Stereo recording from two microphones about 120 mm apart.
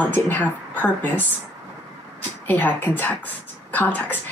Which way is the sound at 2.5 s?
15° left (ahead or behind).